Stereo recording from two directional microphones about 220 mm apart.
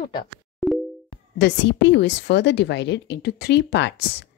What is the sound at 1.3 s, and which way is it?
A woman's voice, 55° left (ahead or behind).